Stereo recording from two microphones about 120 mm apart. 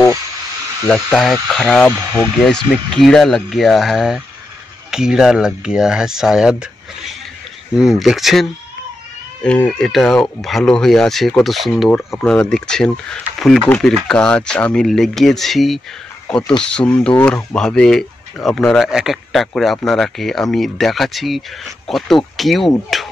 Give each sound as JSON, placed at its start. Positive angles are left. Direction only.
{"t": 0.8, "sound": "speech", "side_deg": 0}
{"t": 1.9, "sound": "speech", "side_deg": -25}
{"t": 2.3, "sound": "speech", "side_deg": 5}
{"t": 9.4, "sound": "speech", "side_deg": 10}